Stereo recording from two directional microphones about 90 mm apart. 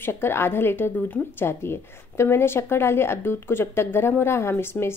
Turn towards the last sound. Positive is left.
turn(degrees=30)  # may be behind; listen again after turning